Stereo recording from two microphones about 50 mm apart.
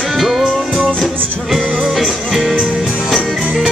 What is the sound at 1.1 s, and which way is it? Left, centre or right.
Music, right.